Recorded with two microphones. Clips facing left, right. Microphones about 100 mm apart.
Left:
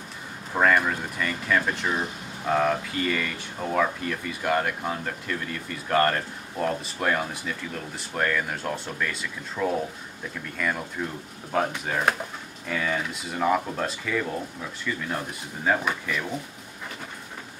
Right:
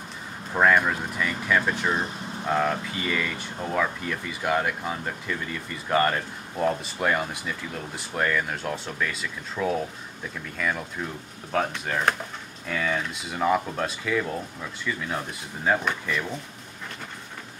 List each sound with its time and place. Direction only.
0.6 s speech: 5° right (ahead or behind)